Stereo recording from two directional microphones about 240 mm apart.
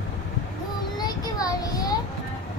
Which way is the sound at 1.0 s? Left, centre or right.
Centre.